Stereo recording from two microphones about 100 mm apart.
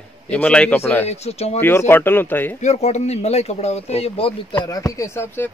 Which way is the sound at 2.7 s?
90° left.